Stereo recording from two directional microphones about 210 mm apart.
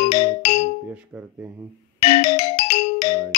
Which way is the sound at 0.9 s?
10° right (ahead or behind).